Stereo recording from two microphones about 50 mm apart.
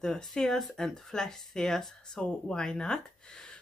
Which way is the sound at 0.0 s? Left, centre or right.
Centre.